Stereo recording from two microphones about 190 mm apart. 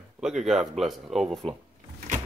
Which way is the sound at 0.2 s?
Centre (ahead or behind).